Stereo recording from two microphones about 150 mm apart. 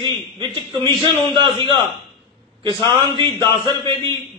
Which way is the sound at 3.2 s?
20° left (ahead or behind).